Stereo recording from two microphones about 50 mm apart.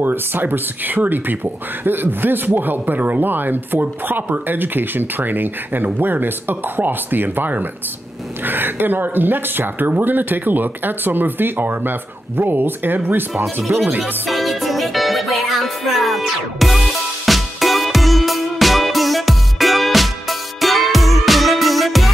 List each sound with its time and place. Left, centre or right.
0.0 s speech: right
14.2 s music: centre